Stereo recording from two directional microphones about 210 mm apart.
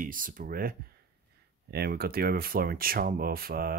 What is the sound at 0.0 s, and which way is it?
Speech, 40° right (ahead or behind).